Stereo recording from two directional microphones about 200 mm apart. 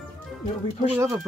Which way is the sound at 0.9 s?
5° right (ahead or behind).